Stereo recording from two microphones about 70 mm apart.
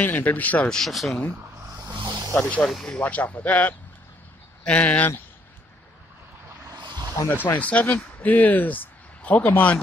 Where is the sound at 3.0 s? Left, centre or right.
Left.